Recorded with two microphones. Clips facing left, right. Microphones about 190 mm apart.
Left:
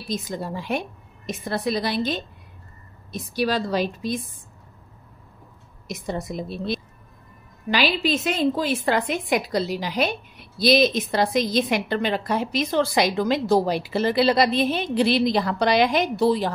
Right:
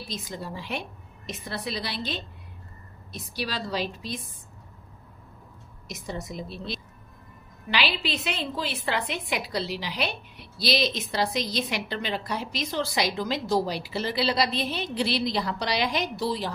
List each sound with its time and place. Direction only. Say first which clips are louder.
0.1 s a woman's voice: left 9 dB; 50° left (ahead or behind)
5.9 s a woman's voice: left 6 dB; 55° left (ahead or behind)